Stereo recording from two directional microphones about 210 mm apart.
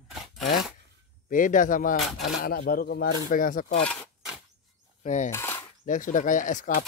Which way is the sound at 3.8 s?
5° left (ahead or behind).